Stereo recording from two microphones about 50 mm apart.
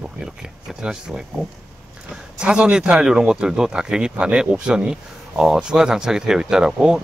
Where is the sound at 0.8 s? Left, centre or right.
Centre.